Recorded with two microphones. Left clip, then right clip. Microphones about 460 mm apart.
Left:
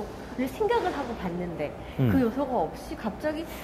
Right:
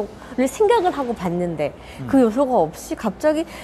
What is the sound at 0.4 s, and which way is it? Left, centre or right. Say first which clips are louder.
A woman's voice: right 9 dB; right.